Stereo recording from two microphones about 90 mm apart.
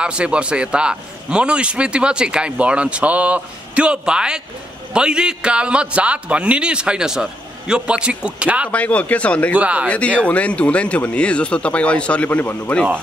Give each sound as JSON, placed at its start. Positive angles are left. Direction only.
{"t": 0.0, "sound": "a man's voice", "side_deg": -10}
{"t": 8.7, "sound": "speech", "side_deg": 15}
{"t": 9.6, "sound": "a man's voice", "side_deg": -15}
{"t": 9.8, "sound": "speech", "side_deg": 15}